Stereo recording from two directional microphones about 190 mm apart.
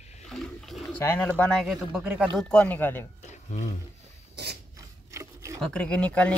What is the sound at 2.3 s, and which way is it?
Speech, 5° left (ahead or behind).